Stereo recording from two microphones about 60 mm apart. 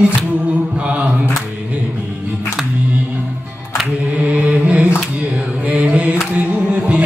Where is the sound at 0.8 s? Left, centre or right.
Right.